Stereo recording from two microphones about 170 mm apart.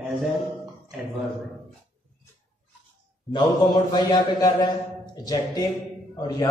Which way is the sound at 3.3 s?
25° left (ahead or behind).